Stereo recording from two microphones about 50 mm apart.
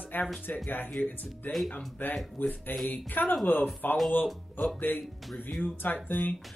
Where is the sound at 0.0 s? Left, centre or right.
Left.